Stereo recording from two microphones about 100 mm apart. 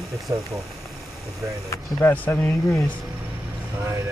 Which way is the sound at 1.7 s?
20° left (ahead or behind).